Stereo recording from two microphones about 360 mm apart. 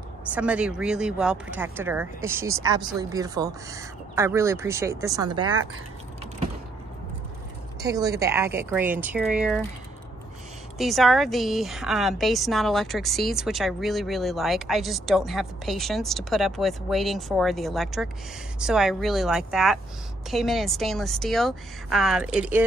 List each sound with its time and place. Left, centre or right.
0.3 s speech: centre
5.4 s speech: right
7.8 s speech: centre
10.8 s speech: centre